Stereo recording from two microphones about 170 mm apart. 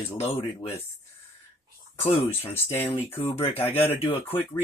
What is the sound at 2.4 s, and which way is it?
Speech, 10° left (ahead or behind).